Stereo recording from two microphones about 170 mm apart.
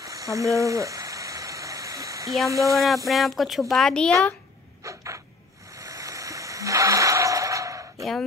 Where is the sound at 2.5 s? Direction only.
20° right (ahead or behind).